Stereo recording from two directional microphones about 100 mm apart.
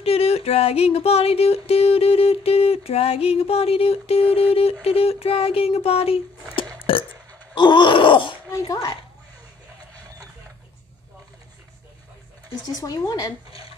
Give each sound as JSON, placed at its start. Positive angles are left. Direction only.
{"t": 0.0, "sound": "music", "side_deg": 85}
{"t": 4.8, "sound": "a sound", "side_deg": 80}
{"t": 6.9, "sound": "burping", "side_deg": 65}
{"t": 7.5, "sound": "groan", "side_deg": 50}
{"t": 12.6, "sound": "speech", "side_deg": 40}
{"t": 13.5, "sound": "a sound", "side_deg": 70}